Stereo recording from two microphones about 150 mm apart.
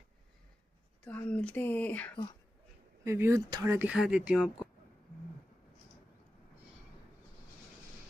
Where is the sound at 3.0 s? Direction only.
20° right (ahead or behind).